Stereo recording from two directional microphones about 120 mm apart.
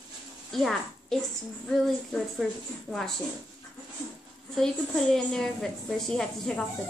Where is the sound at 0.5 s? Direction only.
5° left (ahead or behind).